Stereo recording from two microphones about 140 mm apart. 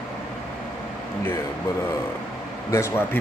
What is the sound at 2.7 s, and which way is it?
Speech, 20° left (ahead or behind).